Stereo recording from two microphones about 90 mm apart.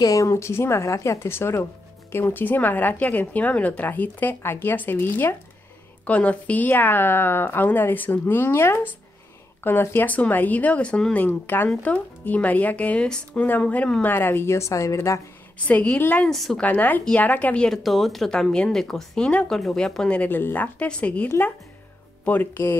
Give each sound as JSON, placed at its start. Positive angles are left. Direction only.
{"t": 0.0, "sound": "a woman's voice", "side_deg": 40}
{"t": 11.1, "sound": "a woman's voice", "side_deg": 20}
{"t": 14.0, "sound": "speech", "side_deg": 25}
{"t": 15.6, "sound": "a woman's voice", "side_deg": 15}
{"t": 16.3, "sound": "speech", "side_deg": 5}
{"t": 16.6, "sound": "a woman's voice", "side_deg": 20}
{"t": 17.6, "sound": "a woman's voice", "side_deg": 0}